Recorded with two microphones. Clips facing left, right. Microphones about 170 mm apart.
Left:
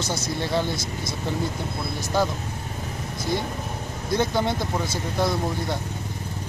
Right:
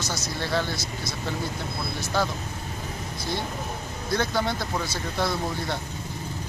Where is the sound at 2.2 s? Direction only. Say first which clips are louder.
Left 3 dB; 15° left (ahead or behind).